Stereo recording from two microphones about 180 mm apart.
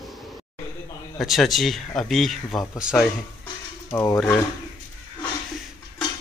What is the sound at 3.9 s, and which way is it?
Speech, 15° left (ahead or behind).